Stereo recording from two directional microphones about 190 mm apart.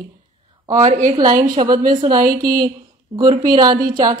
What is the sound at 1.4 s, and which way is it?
A woman's voice, 20° right (ahead or behind).